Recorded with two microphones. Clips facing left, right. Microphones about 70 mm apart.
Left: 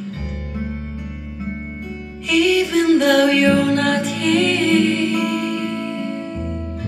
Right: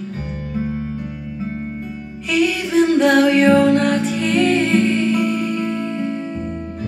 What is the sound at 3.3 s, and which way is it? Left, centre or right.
Mantra, right.